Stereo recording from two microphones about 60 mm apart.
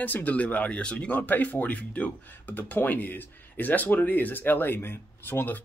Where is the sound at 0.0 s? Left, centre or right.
Left.